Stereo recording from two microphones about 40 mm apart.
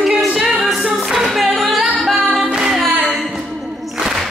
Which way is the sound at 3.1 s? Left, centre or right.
Centre.